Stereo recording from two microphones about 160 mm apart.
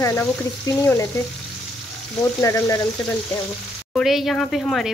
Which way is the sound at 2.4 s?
20° left (ahead or behind).